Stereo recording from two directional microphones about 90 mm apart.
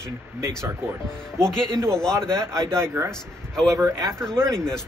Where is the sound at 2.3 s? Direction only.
35° right (ahead or behind).